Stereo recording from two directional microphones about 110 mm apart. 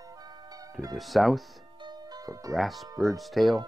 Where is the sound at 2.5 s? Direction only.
Centre (ahead or behind).